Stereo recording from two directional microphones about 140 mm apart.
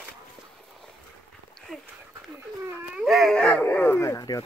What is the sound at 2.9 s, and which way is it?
Dog, 5° right (ahead or behind).